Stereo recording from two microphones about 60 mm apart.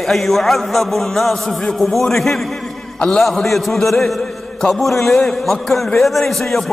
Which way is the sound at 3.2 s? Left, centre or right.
Centre.